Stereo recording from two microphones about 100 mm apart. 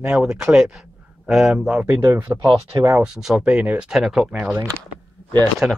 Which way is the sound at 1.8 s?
25° right (ahead or behind).